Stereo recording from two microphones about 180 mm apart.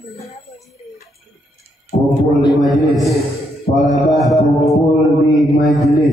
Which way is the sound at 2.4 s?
25° left (ahead or behind).